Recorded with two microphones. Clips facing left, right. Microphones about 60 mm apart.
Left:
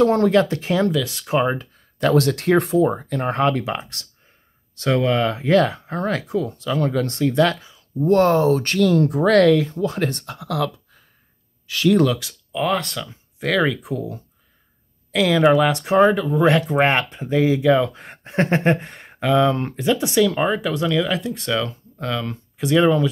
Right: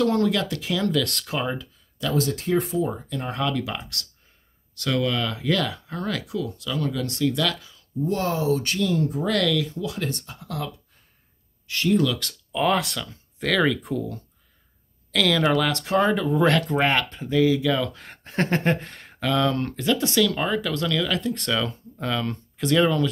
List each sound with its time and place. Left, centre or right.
0.0 s speech: left
0.9 s speech: centre
1.3 s speech: left
8.0 s speech: left
9.4 s speech: left
12.2 s speech: centre; by 16.2 s left
16.2 s speech: centre
16.4 s speech: centre
21.2 s speech: centre